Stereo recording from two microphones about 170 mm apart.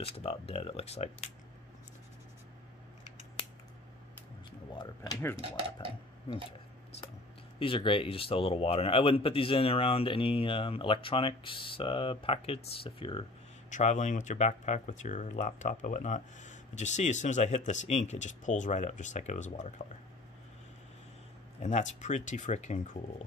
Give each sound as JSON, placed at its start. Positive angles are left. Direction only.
{"t": 0.0, "sound": "speech", "side_deg": 35}
{"t": 4.7, "sound": "speech", "side_deg": 25}
{"t": 7.5, "sound": "speech", "side_deg": 30}
{"t": 13.7, "sound": "speech", "side_deg": 45}
{"t": 21.6, "sound": "speech", "side_deg": 45}